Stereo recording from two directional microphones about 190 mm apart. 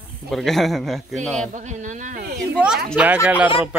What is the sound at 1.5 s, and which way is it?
Speech, 40° right (ahead or behind).